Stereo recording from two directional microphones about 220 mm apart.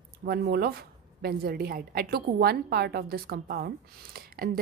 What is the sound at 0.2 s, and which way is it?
A woman's voice, 45° right (ahead or behind).